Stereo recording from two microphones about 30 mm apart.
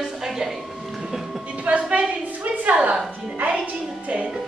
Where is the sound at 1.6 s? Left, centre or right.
Right.